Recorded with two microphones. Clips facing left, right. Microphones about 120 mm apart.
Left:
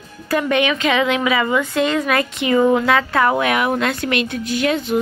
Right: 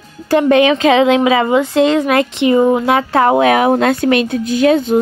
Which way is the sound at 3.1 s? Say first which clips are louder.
Right 6 dB; 35° right (ahead or behind).